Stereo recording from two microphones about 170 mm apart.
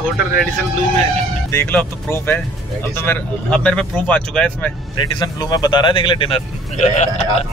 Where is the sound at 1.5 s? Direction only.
10° left (ahead or behind).